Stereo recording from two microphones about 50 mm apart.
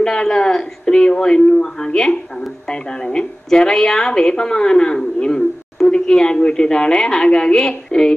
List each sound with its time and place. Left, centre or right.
0.0 s a woman's voice: centre